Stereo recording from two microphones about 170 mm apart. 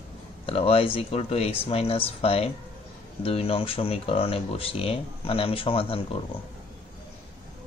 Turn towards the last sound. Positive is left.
turn(degrees=30)  # may be behind; listen again after turning